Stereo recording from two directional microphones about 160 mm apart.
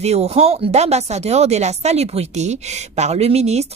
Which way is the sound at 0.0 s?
40° right (ahead or behind).